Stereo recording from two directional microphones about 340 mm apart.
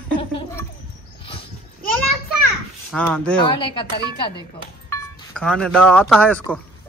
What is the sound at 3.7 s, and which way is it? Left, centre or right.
Speech, centre.